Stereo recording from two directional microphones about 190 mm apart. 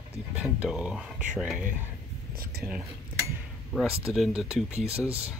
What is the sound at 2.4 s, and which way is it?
Speech, 55° right (ahead or behind).